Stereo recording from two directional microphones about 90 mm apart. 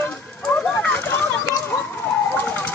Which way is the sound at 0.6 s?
10° left (ahead or behind).